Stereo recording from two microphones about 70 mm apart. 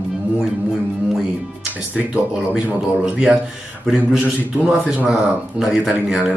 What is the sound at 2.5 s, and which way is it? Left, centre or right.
Speech, centre.